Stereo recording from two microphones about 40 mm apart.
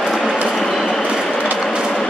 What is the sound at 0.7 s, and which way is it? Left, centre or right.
Train, centre.